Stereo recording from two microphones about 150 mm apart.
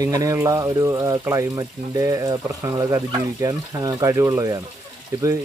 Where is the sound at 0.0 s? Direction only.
25° right (ahead or behind).